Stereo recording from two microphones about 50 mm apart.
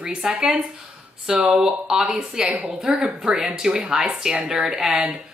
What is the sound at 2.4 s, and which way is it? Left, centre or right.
Speech, right.